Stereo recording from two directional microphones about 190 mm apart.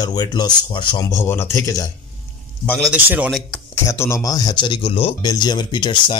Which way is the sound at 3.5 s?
15° left (ahead or behind).